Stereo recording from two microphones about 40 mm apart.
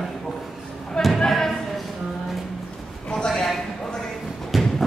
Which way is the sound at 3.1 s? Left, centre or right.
Centre.